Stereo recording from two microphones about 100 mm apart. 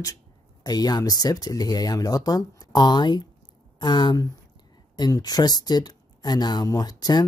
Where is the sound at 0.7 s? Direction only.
40° left (ahead or behind).